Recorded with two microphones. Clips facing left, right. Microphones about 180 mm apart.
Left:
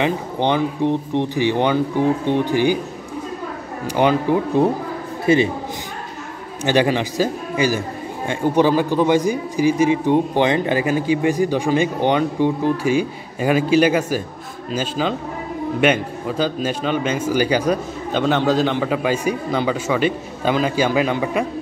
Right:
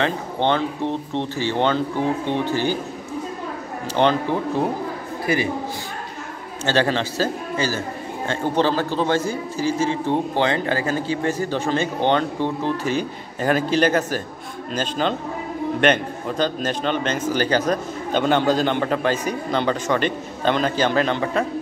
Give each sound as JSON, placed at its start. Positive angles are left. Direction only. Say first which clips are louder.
{"t": 0.0, "sound": "a man's voice", "louder": "left 2 dB", "side_deg": 15}
{"t": 3.8, "sound": "a man's voice", "louder": "left 2 dB", "side_deg": 10}
{"t": 5.2, "sound": "a man's voice", "louder": "left 6 dB", "side_deg": 25}
{"t": 6.6, "sound": "a man's voice", "louder": "left 3 dB", "side_deg": 15}
{"t": 18.1, "sound": "a man's voice", "louder": "left 1 dB", "side_deg": 0}